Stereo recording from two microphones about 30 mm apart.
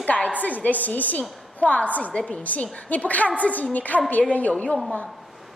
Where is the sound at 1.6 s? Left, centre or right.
Left.